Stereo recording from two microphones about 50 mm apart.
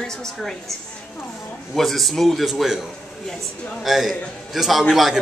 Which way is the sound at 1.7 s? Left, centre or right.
Centre.